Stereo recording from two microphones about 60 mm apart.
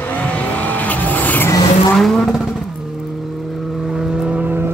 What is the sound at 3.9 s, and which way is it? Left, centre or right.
Vehicle, centre.